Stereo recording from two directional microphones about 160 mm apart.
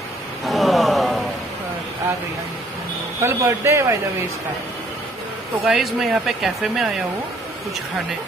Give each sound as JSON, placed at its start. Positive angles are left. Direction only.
{"t": 0.5, "sound": "a sound", "side_deg": 0}
{"t": 3.2, "sound": "a man's voice", "side_deg": -15}
{"t": 5.7, "sound": "speech", "side_deg": 0}